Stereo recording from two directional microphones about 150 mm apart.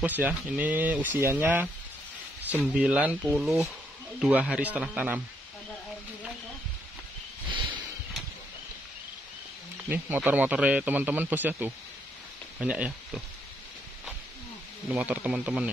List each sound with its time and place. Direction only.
0.0 s speech: 10° right (ahead or behind)
7.4 s a sound: 30° right (ahead or behind)
9.8 s speech: 15° right (ahead or behind)
14.9 s speech: 10° right (ahead or behind)